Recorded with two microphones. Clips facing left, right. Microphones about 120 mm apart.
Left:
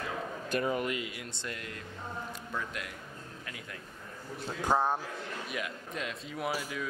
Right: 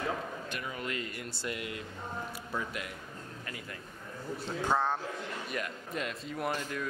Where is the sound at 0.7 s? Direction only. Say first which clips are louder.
Left 4 dB; 15° left (ahead or behind).